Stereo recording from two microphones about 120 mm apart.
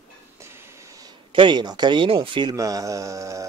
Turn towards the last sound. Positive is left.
turn(degrees=-25)  # may be behind; listen again after turning